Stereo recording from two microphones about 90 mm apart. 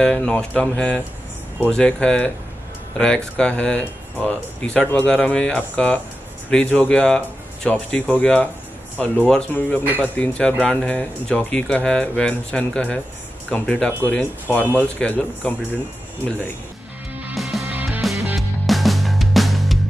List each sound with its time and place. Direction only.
0.0 s speech: 10° left (ahead or behind)
3.3 s speech: 10° left (ahead or behind)
17.4 s music: centre (ahead or behind)